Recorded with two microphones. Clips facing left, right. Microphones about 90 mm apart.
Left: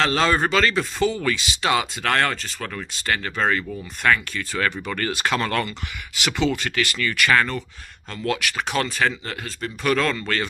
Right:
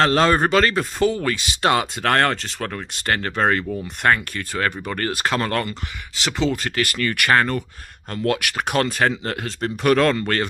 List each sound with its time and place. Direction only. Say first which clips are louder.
0.0 s speech: right 3 dB; 45° right (ahead or behind)
4.0 s speech: right 1 dB; 40° right (ahead or behind)